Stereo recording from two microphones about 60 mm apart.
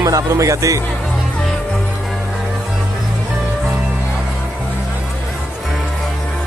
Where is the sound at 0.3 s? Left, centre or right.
Right.